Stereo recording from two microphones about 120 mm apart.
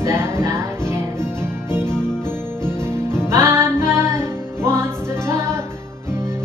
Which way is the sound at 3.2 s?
20° right (ahead or behind).